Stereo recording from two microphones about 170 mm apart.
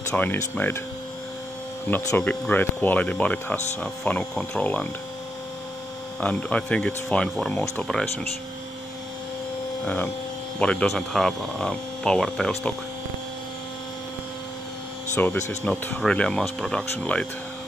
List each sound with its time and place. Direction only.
0.1 s speech: 10° left (ahead or behind)
1.9 s speech: 10° left (ahead or behind)
6.2 s speech: 10° left (ahead or behind)
9.8 s speech: 10° left (ahead or behind)
15.1 s speech: 10° left (ahead or behind)